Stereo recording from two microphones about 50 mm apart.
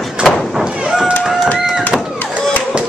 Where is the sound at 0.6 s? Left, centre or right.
Right.